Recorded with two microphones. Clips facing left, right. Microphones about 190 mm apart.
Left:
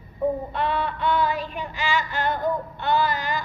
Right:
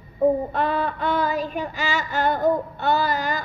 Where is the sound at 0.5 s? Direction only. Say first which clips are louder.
Right 2 dB; 45° right (ahead or behind).